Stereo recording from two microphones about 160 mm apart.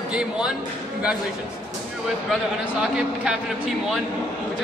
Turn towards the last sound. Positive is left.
turn(degrees=-5)  # may be behind; listen again after turning